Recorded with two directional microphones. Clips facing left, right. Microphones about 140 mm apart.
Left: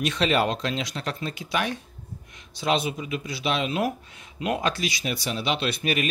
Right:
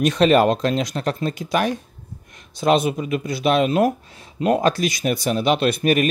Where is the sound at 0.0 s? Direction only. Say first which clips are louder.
Right 8 dB; 45° right (ahead or behind).